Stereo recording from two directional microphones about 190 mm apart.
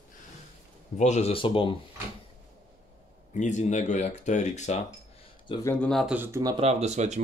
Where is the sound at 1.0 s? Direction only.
35° left (ahead or behind).